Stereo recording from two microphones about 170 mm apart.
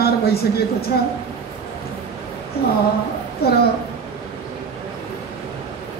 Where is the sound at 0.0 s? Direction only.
65° left (ahead or behind).